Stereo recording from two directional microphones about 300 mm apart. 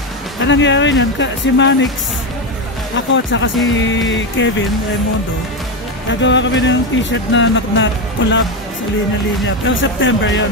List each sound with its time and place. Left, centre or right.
0.4 s speech: left
3.1 s speech: left
6.0 s speech: left
9.7 s speech: left